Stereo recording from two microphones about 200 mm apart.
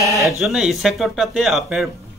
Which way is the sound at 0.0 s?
15° right (ahead or behind).